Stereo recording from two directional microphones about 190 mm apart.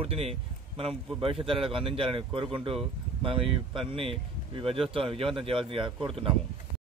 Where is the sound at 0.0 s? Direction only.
30° right (ahead or behind).